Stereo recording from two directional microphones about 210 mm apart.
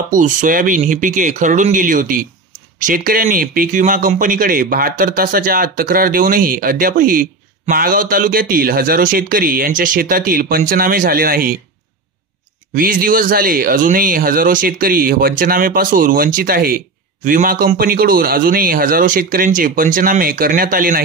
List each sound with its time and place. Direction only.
0.1 s speech: 40° right (ahead or behind)
12.7 s speech: 40° right (ahead or behind)